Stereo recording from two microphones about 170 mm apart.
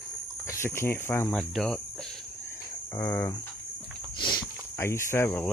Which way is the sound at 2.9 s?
15° left (ahead or behind).